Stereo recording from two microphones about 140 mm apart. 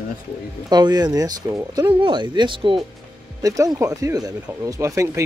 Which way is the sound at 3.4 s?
25° right (ahead or behind).